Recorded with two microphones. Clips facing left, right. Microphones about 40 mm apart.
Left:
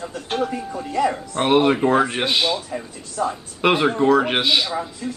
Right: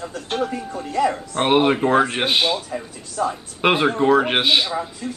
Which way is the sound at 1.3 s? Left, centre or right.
Centre.